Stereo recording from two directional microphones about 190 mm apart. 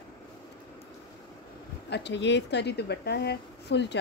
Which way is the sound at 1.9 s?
65° left (ahead or behind).